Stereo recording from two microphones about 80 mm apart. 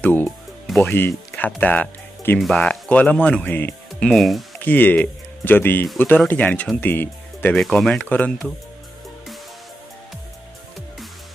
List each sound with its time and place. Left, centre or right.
0.0 s music: left
0.7 s speech: left
2.3 s speech: centre
4.1 s speech: centre
4.6 s speech: left
7.5 s speech: centre